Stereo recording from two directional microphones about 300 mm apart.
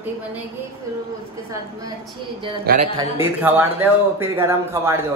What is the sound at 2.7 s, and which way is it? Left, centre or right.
Speech, right.